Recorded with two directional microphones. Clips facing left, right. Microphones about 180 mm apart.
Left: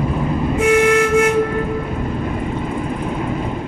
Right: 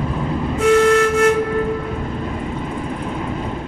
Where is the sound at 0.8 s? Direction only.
15° left (ahead or behind).